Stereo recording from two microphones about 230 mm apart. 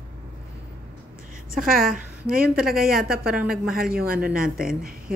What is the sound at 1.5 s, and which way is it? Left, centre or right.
Speech, right.